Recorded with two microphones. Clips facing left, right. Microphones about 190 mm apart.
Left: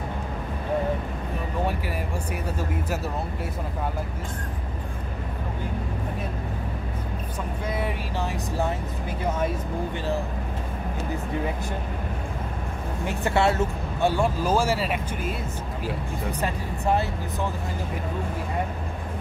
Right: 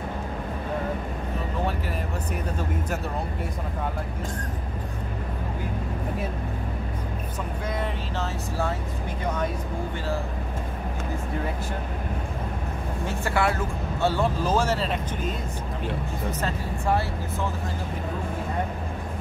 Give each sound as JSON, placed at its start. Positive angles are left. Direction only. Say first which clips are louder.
{"t": 7.8, "sound": "speech", "louder": "left 1 dB", "side_deg": 15}
{"t": 13.0, "sound": "speech", "louder": "left 3 dB", "side_deg": 20}
{"t": 14.1, "sound": "speech", "louder": "left 1 dB", "side_deg": 10}